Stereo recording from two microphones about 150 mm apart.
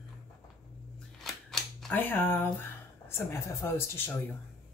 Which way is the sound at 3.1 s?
15° left (ahead or behind).